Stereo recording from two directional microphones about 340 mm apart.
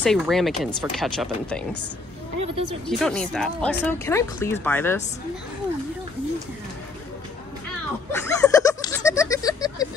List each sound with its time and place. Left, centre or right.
0.0 s speech: centre
2.3 s music: right
3.0 s speech: centre
8.1 s a sound: centre